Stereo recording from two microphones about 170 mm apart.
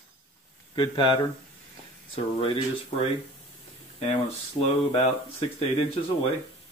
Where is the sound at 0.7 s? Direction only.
30° left (ahead or behind).